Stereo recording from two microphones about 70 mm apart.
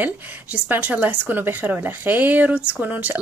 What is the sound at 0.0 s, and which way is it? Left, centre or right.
A woman's voice, right.